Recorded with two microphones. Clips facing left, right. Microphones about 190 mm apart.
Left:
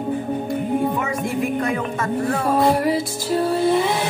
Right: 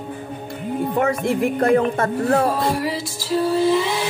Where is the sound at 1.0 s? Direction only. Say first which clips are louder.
Right 4 dB; 60° right (ahead or behind).